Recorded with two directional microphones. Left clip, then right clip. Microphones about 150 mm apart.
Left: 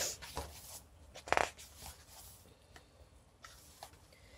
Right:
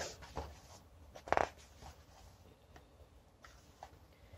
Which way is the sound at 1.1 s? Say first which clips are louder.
Left 1 dB; 10° right (ahead or behind).